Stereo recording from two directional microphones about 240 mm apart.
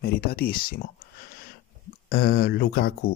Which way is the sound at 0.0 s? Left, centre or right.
Left.